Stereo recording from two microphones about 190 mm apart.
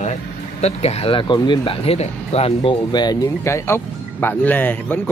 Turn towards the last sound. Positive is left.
turn(degrees=10)  # may be behind; listen again after turning